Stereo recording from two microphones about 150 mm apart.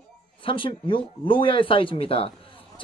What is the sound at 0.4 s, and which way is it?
Speech, 35° left (ahead or behind).